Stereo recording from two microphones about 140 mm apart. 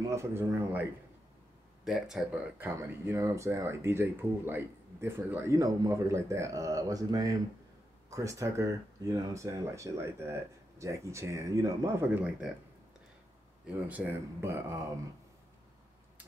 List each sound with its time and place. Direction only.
0.0 s speech: 20° right (ahead or behind)
1.9 s speech: centre (ahead or behind)
2.6 s speech: 20° right (ahead or behind)
13.8 s speech: 15° right (ahead or behind)